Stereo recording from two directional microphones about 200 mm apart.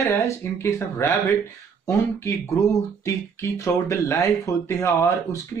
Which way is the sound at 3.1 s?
15° left (ahead or behind).